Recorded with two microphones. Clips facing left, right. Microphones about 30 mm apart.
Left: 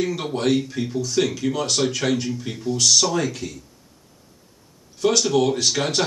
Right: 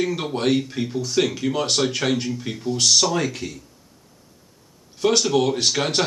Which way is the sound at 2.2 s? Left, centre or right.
Centre.